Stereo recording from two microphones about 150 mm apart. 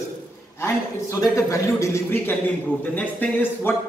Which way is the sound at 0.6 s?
20° left (ahead or behind).